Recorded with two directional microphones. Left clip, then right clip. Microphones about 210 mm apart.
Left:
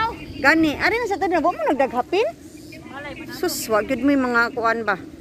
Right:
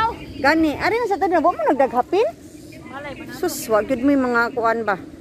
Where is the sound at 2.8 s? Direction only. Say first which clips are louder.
Right 2 dB; 50° right (ahead or behind).